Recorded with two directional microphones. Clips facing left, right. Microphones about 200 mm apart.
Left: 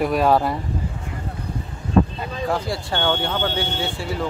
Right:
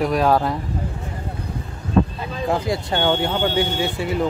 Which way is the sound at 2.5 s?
20° right (ahead or behind).